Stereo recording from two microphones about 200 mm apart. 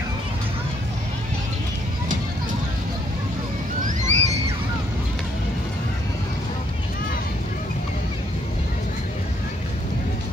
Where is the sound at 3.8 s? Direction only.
40° right (ahead or behind).